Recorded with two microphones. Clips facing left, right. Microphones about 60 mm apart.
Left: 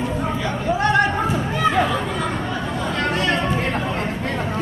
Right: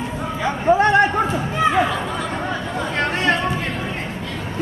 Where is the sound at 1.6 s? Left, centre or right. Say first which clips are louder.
Right 2 dB; centre.